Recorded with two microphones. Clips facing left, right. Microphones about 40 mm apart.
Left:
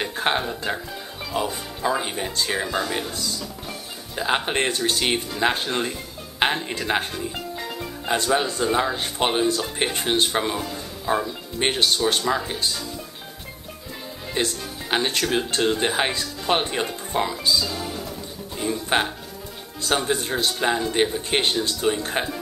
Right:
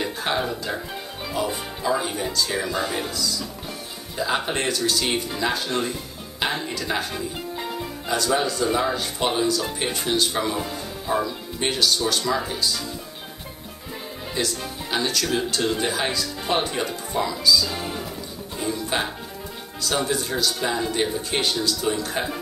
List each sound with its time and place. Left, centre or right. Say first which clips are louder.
0.0 s speech: left 1 dB; left
8.1 s speech: left 1 dB; left
11.6 s speech: left 1 dB; left
14.3 s speech: left 1 dB; left
18.7 s speech: left 3 dB; left
20.1 s speech: left 1 dB; left